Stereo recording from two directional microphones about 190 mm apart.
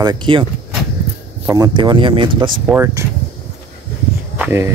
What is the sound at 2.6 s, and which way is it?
Speech, 10° right (ahead or behind).